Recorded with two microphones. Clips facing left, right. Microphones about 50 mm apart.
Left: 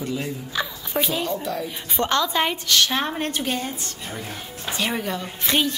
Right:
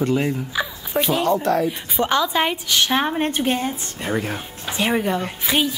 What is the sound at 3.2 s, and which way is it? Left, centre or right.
Speech, right.